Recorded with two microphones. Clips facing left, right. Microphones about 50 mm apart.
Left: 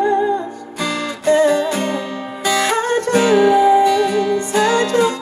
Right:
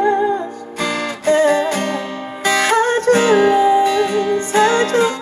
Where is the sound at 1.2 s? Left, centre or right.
Right.